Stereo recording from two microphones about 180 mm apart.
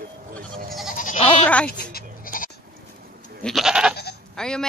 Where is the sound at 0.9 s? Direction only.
45° left (ahead or behind).